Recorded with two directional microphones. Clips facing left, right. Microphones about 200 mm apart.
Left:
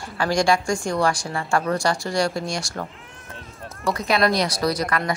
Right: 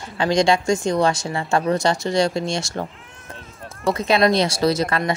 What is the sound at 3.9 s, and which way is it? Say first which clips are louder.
Speech: right 3 dB; 25° right (ahead or behind).